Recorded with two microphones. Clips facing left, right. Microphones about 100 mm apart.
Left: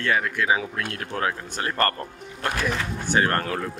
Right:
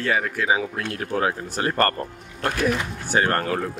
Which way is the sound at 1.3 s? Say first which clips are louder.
Right 4 dB; 35° right (ahead or behind).